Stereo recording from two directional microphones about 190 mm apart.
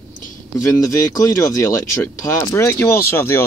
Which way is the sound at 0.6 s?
15° left (ahead or behind).